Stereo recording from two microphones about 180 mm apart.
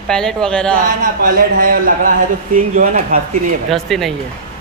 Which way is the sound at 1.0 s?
50° right (ahead or behind).